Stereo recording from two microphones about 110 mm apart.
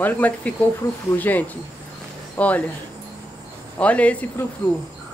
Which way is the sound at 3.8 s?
10° left (ahead or behind).